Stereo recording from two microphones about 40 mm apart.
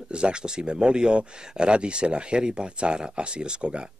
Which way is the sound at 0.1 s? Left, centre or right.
Right.